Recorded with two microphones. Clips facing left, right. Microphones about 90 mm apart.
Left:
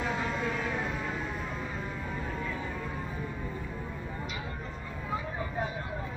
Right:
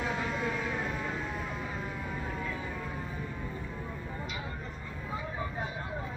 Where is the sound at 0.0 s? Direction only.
Centre (ahead or behind).